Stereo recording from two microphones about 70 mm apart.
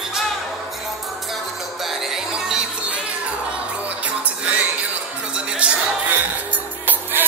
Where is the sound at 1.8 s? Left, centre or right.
Centre.